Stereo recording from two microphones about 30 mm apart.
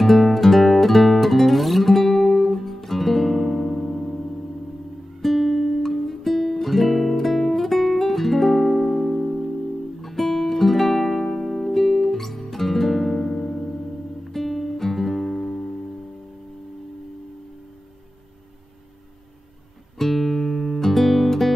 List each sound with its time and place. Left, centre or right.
0.0 s music: centre
5.2 s guitar: centre
10.0 s music: centre
13.4 s music: left
14.3 s music: centre
15.3 s music: left
20.0 s music: centre